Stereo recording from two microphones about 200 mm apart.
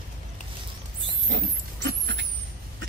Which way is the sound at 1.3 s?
60° right (ahead or behind).